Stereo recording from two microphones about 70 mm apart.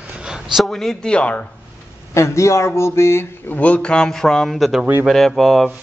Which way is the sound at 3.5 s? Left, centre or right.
Centre.